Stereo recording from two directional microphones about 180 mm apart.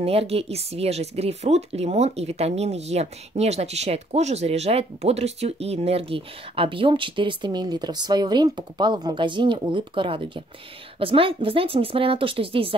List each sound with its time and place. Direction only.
0.0 s a woman's voice: 35° right (ahead or behind)